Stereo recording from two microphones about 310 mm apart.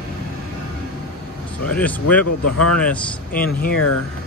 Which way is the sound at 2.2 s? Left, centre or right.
Left.